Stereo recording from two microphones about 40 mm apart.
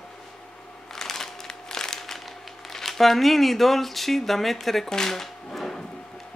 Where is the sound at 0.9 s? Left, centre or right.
Centre.